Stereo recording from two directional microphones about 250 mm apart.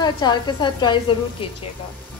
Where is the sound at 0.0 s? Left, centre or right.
Centre.